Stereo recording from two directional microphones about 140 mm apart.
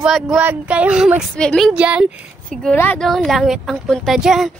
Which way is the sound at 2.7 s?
15° left (ahead or behind).